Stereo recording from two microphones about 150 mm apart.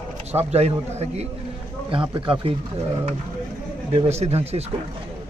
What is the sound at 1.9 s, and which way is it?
Speech, 35° right (ahead or behind).